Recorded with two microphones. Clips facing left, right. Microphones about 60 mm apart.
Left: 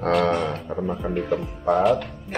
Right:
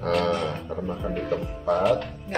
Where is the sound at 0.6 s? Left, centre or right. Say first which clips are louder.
Left 3 dB; centre.